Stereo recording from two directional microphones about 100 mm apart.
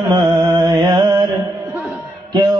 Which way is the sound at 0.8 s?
50° right (ahead or behind).